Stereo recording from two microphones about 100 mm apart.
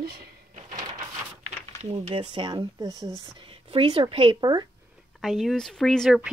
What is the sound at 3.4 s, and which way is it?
A woman's voice, 65° right (ahead or behind).